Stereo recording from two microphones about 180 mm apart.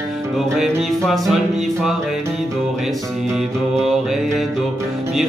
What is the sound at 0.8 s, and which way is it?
Music, centre (ahead or behind).